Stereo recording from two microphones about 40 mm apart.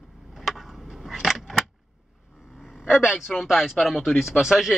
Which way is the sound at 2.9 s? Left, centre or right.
Centre.